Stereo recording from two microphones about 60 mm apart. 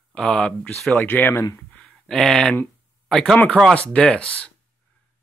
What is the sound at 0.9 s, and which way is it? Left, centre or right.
Speech, left.